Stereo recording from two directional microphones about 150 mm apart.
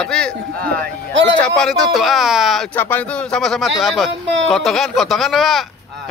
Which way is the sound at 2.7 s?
15° left (ahead or behind).